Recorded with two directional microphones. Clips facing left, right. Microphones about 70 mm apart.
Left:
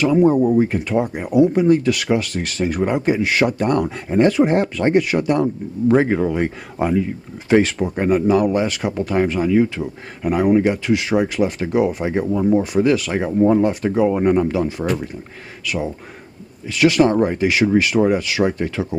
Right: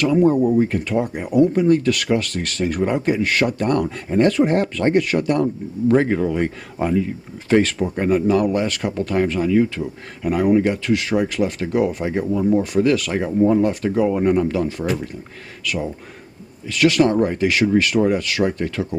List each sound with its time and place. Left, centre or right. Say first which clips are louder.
0.1 s speech: left 1 dB; centre
13.4 s speech: left 1 dB; left
13.7 s speech: left 1 dB; centre
14.8 s speech: left 1 dB; centre
15.6 s speech: left 1 dB; centre